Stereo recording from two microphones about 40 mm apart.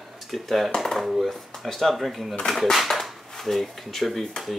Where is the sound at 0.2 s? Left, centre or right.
Centre.